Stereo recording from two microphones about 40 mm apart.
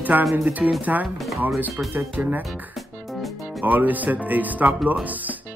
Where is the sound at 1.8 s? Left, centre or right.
Right.